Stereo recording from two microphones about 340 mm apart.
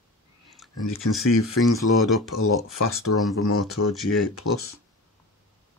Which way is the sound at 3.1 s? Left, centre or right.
Left.